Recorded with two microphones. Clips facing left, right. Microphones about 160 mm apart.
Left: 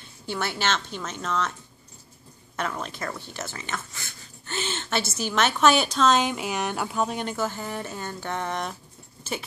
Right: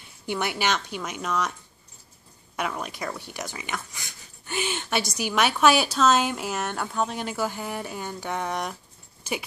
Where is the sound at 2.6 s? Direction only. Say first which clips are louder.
Even; 10° right (ahead or behind).